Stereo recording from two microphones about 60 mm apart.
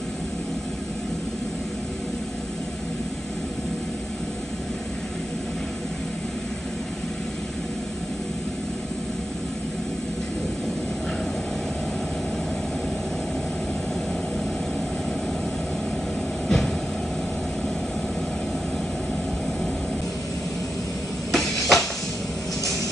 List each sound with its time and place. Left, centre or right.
16.4 s vehicle: centre
21.3 s train: centre